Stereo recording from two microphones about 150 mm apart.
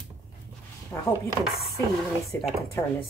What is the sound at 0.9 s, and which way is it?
Speech, 20° left (ahead or behind).